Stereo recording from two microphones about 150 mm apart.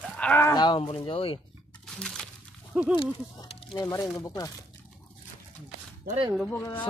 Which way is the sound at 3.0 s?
35° left (ahead or behind).